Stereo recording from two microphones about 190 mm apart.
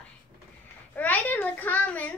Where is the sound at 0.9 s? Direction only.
10° left (ahead or behind).